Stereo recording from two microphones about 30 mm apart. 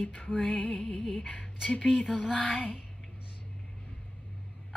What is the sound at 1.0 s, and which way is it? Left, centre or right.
Music, left.